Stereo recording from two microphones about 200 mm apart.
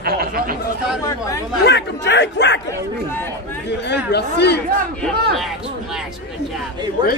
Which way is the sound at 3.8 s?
55° left (ahead or behind).